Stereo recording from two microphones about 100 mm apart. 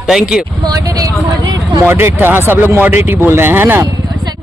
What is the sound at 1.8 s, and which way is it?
Speech, 25° right (ahead or behind).